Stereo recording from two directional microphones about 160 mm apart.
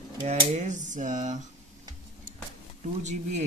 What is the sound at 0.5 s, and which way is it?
Speech, 50° right (ahead or behind).